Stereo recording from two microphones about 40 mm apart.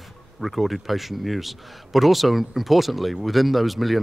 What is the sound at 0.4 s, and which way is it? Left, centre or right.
Speech, centre.